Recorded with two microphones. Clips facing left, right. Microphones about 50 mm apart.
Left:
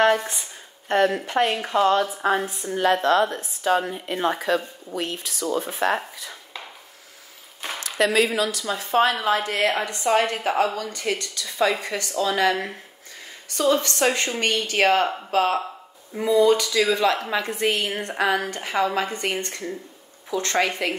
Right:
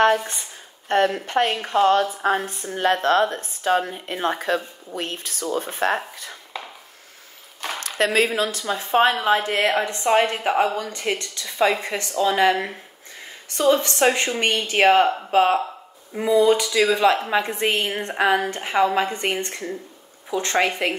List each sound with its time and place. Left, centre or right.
0.8 s a woman's voice: right
7.8 s a woman's voice: right